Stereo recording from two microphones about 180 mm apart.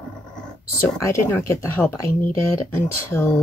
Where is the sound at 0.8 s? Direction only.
15° left (ahead or behind).